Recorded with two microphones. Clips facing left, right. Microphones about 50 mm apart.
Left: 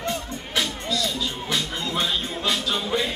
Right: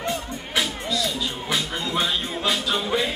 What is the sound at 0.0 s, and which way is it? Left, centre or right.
Music, centre.